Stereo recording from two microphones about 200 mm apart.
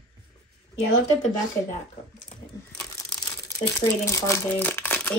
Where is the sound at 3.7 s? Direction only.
15° left (ahead or behind).